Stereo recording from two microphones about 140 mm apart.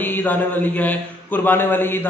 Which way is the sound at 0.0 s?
15° left (ahead or behind).